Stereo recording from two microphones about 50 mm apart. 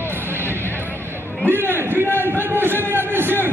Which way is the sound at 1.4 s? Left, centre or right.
Right.